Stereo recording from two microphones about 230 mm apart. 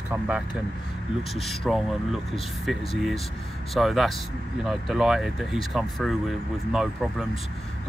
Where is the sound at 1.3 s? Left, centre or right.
Centre.